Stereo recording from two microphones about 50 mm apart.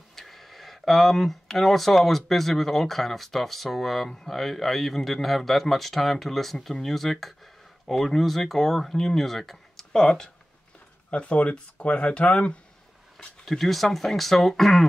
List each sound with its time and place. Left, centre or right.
0.1 s speech: centre
11.1 s speech: left
13.5 s speech: centre